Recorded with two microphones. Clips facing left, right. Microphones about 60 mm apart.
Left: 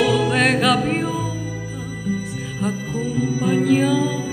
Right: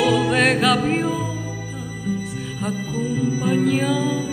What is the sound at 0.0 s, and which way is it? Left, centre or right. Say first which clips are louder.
Music: even; centre.